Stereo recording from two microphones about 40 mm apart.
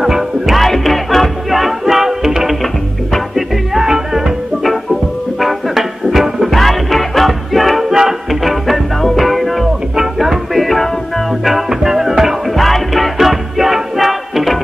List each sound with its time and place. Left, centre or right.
0.0 s music: centre
5.4 s music: centre
7.9 s music: centre
8.3 s music: centre
12.4 s music: centre